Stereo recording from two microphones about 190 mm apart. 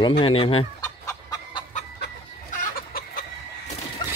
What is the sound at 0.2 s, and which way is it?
Speech, 30° left (ahead or behind).